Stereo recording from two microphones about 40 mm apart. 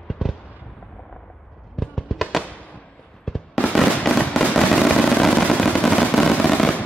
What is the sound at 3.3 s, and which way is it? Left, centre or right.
Fireworks, centre.